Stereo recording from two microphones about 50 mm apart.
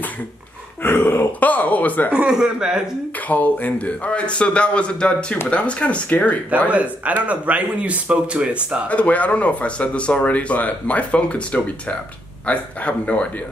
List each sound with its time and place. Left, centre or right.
0.8 s a sound: left
1.4 s speech: left
2.1 s speech: centre
3.3 s speech: left
6.7 s speech: right
8.8 s speech: left